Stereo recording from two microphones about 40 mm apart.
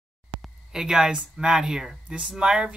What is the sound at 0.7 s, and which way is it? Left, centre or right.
Speech, centre.